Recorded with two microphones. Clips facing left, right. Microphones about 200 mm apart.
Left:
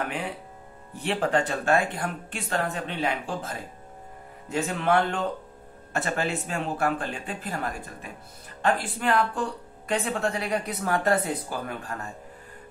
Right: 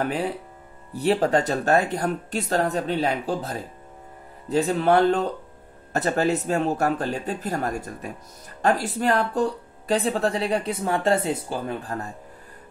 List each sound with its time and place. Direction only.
0.0 s speech: 35° right (ahead or behind)